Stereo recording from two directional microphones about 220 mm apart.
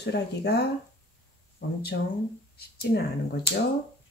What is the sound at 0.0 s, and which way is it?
Speech, 50° left (ahead or behind).